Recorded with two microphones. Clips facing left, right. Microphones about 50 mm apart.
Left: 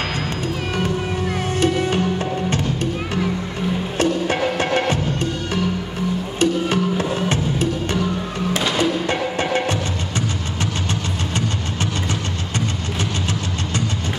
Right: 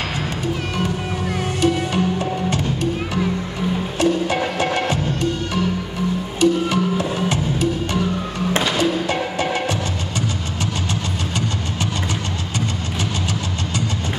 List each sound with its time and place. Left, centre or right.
1.6 s music: left
4.0 s music: left
6.4 s music: left